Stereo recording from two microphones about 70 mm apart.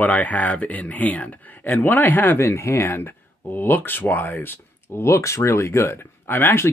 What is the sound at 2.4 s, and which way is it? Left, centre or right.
Speech, left.